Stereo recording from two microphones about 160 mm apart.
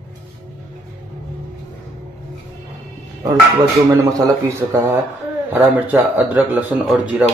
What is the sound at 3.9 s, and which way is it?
Speech, 20° right (ahead or behind).